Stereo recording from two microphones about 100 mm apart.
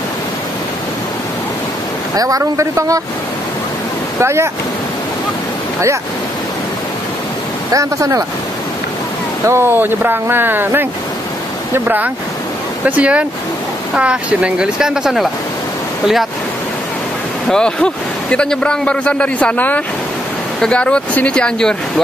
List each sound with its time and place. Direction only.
2.1 s a man's voice: 35° right (ahead or behind)
4.2 s speech: 25° right (ahead or behind)
7.7 s a man's voice: 30° right (ahead or behind)
9.5 s speech: 25° right (ahead or behind); by 15.2 s 5° right (ahead or behind)
17.5 s a man's voice: 10° left (ahead or behind)